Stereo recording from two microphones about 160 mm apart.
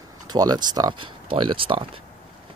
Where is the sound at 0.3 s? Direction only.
25° right (ahead or behind).